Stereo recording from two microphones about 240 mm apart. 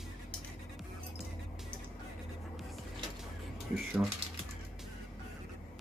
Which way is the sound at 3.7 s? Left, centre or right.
Centre.